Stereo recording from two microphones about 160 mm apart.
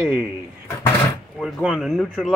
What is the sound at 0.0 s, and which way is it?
Speech, 15° right (ahead or behind).